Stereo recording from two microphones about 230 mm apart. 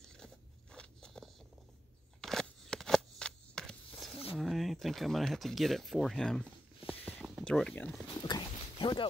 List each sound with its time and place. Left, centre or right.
0.0 s crunch: centre
2.2 s scissors: centre
4.4 s speech: centre
6.9 s a sound: centre
7.4 s speech: centre
8.2 s clip-clop: centre